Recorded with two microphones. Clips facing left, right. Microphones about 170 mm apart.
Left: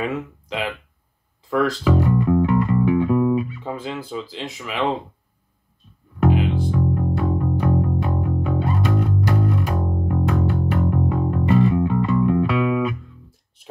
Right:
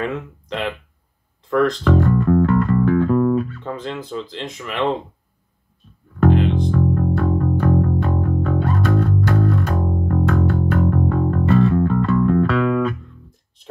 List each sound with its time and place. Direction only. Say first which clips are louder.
0.0 s speech: even; 5° left (ahead or behind)
1.5 s music: right 2 dB; 5° left (ahead or behind)
6.1 s music: right 3 dB; 5° left (ahead or behind)